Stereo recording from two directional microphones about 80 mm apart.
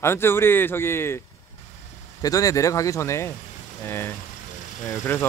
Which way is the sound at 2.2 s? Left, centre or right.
Left.